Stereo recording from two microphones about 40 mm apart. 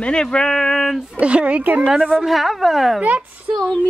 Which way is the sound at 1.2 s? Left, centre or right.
Right.